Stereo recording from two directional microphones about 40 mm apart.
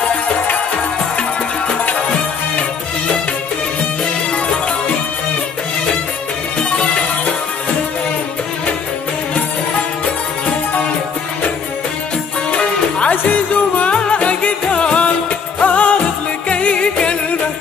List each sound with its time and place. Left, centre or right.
12.4 s music: left
15.6 s music: left
16.4 s music: left